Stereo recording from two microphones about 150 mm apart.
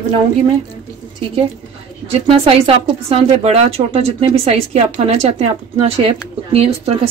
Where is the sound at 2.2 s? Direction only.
40° right (ahead or behind).